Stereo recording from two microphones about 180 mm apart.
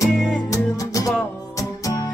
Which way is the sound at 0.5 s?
20° left (ahead or behind).